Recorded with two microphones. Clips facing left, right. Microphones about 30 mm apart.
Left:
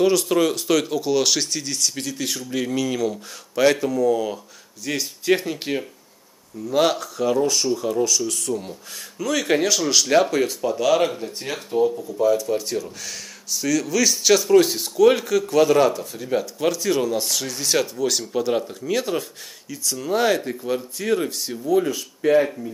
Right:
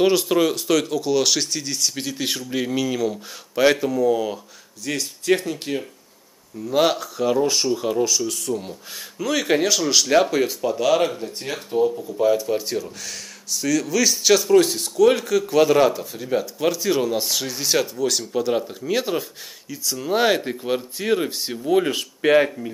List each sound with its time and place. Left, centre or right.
0.2 s speech: centre
2.0 s speech: centre
4.8 s speech: centre
6.7 s speech: centre
7.7 s speech: right
8.1 s speech: centre
12.2 s speech: right; by 15.5 s centre
15.5 s speech: centre
18.9 s speech: centre
20.2 s speech: right
21.6 s speech: right
22.2 s speech: right